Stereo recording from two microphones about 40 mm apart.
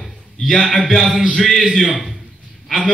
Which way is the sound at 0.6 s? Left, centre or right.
Centre.